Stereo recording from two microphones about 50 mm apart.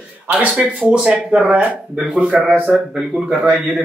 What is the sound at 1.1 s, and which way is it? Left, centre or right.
A man's voice, right.